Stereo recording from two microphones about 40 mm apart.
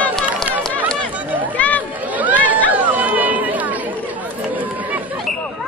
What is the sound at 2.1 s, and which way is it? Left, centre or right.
Chatter, right.